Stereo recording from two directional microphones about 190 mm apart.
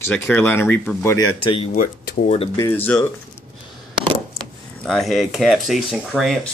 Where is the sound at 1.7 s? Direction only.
45° left (ahead or behind).